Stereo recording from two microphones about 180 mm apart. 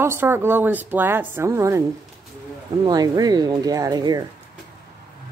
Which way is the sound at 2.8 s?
20° right (ahead or behind).